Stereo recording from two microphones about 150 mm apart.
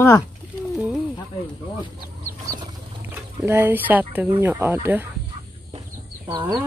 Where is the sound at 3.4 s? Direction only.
15° right (ahead or behind).